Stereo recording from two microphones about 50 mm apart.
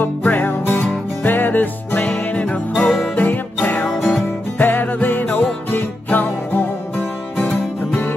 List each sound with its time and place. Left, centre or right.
0.0 s music: left
3.9 s music: centre
4.6 s music: left